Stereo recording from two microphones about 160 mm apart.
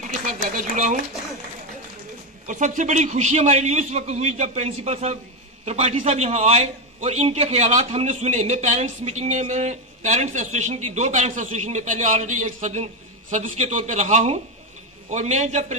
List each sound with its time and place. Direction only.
0.2 s a man's voice: 55° right (ahead or behind)
2.4 s a man's voice: 50° right (ahead or behind)